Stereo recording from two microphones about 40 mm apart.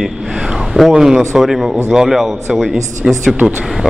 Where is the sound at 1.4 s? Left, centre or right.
Centre.